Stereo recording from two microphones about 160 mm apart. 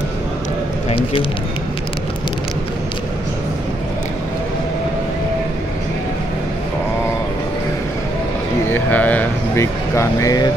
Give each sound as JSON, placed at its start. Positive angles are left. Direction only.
{"t": 0.8, "sound": "speech", "side_deg": 35}
{"t": 8.6, "sound": "speech", "side_deg": 10}